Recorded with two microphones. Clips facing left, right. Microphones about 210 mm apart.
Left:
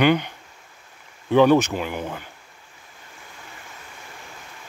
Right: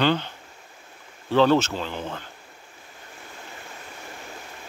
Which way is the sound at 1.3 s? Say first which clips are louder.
Left 3 dB; 15° left (ahead or behind).